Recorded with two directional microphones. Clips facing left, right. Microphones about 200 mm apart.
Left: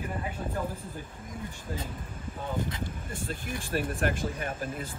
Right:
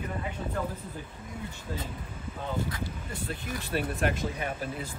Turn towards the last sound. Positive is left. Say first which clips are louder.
# even
turn(degrees=45)  # may be behind; listen again after turning